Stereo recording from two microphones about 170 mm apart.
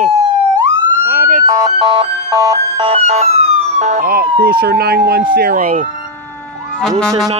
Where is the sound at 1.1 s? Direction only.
50° right (ahead or behind).